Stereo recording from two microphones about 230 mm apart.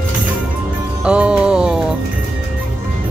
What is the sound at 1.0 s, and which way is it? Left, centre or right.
Music, centre.